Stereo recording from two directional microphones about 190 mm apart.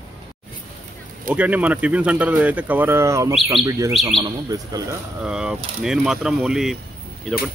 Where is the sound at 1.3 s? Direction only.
5° right (ahead or behind).